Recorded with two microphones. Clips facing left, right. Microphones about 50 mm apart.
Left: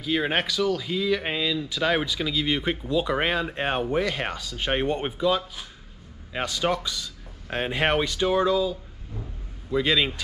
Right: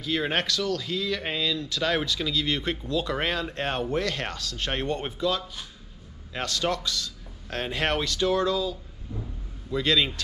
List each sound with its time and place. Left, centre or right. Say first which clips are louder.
0.0 s speech: left 2 dB; centre